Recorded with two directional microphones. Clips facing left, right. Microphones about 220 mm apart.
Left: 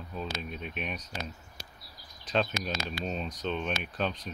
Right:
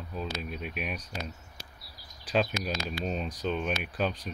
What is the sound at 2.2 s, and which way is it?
Speech, 5° right (ahead or behind).